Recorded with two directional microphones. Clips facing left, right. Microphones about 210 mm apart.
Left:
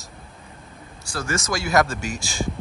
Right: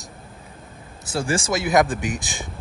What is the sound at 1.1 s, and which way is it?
Speech, 30° right (ahead or behind).